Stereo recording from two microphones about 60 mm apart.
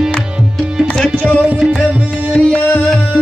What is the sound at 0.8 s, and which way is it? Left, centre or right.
Tabla, centre.